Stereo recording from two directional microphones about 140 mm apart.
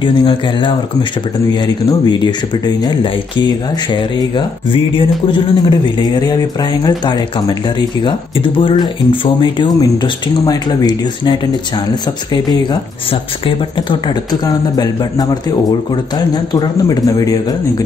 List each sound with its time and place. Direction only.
0.0 s speech: 35° left (ahead or behind)
13.8 s a man's voice: 30° left (ahead or behind)